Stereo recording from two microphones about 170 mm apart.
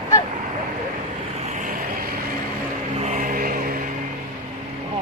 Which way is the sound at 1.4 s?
50° right (ahead or behind).